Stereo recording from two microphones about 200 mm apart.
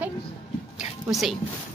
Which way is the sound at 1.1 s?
Centre (ahead or behind).